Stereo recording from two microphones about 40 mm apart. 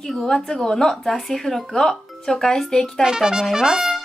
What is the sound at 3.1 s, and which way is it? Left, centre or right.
Brass instrument, centre.